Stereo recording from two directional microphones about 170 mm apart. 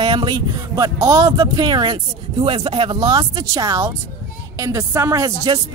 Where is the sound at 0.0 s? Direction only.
25° right (ahead or behind).